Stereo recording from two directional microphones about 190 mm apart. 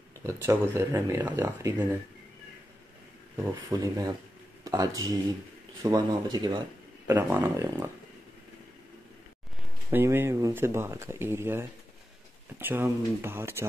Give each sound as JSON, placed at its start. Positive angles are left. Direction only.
{"t": 0.2, "sound": "speech", "side_deg": -15}
{"t": 3.5, "sound": "speech", "side_deg": -20}
{"t": 9.8, "sound": "speech", "side_deg": -10}